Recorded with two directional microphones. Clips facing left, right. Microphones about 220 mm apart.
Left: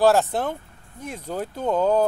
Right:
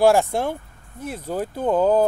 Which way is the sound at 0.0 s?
10° right (ahead or behind).